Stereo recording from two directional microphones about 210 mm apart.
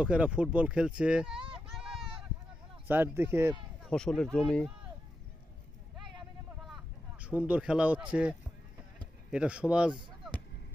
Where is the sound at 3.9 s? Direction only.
5° left (ahead or behind).